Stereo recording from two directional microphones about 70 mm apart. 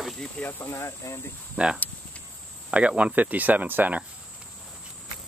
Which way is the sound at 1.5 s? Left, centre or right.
Centre.